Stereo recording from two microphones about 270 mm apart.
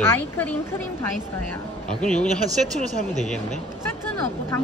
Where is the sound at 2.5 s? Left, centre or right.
Right.